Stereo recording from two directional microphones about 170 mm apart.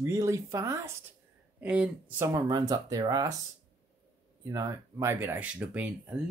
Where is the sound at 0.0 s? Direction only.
15° right (ahead or behind).